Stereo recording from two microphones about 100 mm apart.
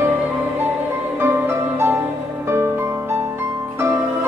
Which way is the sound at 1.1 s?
25° right (ahead or behind).